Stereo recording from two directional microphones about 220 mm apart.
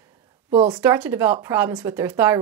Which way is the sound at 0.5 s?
25° right (ahead or behind).